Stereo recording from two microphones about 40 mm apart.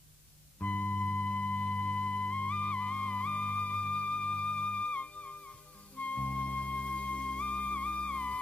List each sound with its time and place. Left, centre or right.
0.6 s music: left
4.7 s music: left